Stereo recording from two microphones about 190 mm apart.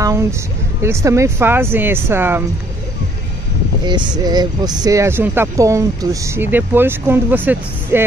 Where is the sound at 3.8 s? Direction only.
20° right (ahead or behind).